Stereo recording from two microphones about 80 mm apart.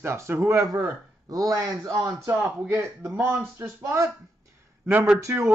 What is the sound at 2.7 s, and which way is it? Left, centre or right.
Speech, right.